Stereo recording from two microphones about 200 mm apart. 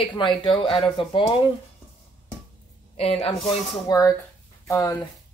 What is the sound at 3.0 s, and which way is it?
Speech, 30° left (ahead or behind).